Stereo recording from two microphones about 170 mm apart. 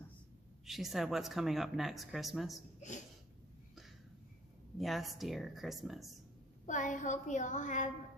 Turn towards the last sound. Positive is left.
turn(degrees=45)  # may be behind; listen again after turning